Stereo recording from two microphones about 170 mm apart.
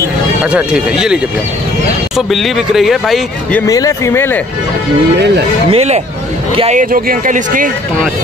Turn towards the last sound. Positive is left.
turn(degrees=-50)  # may be behind; listen again after turning